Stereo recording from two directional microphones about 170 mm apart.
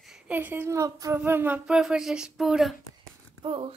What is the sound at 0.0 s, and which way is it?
Speech, 5° right (ahead or behind).